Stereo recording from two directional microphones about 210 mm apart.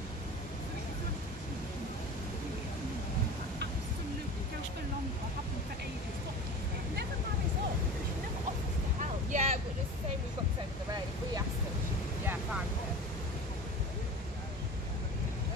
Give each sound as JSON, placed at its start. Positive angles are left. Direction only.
{"t": 9.0, "sound": "vehicle", "side_deg": -35}